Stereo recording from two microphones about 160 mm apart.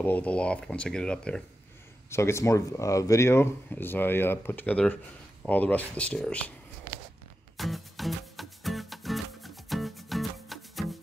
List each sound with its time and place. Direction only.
0.0 s speech: 10° left (ahead or behind)
2.0 s speech: 15° left (ahead or behind)
7.5 s music: centre (ahead or behind)